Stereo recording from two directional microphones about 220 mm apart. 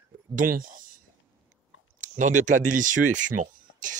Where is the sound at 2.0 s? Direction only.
35° right (ahead or behind).